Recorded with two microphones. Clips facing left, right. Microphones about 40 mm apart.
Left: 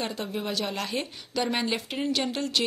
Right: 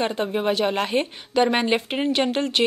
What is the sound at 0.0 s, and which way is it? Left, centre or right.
A woman's voice, right.